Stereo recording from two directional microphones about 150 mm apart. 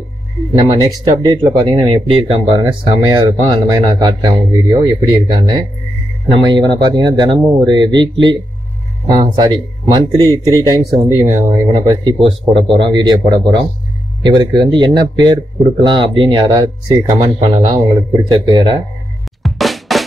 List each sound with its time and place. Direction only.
0.6 s speech: 25° right (ahead or behind)
19.4 s drum: centre (ahead or behind)